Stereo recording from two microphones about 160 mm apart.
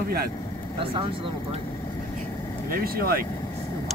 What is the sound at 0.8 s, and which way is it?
Speech, 35° right (ahead or behind).